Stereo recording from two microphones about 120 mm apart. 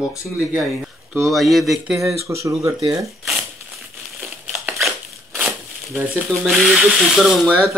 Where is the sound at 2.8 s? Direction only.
30° right (ahead or behind).